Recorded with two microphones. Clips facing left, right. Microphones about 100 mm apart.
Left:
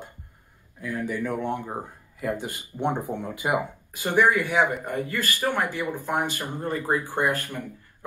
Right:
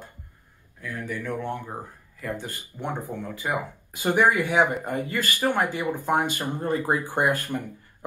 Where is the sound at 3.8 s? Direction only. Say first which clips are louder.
Right 1 dB; 20° right (ahead or behind).